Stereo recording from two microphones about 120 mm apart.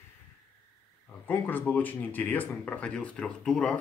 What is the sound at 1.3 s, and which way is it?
Speech, 15° left (ahead or behind).